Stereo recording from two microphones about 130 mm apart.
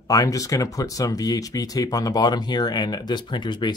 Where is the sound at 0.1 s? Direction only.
25° left (ahead or behind).